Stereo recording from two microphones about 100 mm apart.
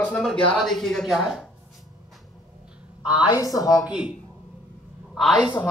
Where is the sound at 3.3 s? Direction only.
35° left (ahead or behind).